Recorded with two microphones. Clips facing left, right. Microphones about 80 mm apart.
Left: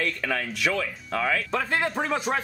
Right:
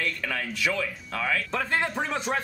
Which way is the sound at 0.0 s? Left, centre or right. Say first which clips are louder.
Left 3 dB; centre.